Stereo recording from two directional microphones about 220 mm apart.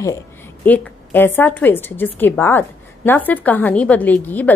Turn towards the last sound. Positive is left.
turn(degrees=10)  # may be behind; listen again after turning